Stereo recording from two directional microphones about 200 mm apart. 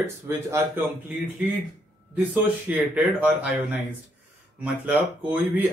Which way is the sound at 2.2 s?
5° right (ahead or behind).